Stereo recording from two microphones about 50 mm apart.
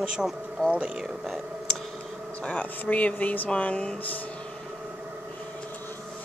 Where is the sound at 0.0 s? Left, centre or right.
Centre.